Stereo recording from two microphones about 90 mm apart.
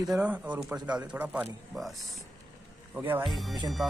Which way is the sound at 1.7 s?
Centre (ahead or behind).